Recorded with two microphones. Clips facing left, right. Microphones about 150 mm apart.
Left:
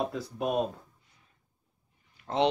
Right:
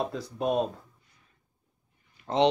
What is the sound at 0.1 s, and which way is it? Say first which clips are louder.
Speech: right 2 dB; 5° left (ahead or behind).